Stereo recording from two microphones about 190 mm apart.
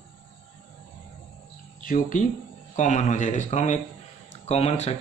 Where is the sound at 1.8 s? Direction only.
45° left (ahead or behind).